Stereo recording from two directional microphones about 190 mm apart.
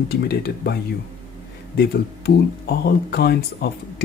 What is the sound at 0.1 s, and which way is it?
Speech, 60° left (ahead or behind).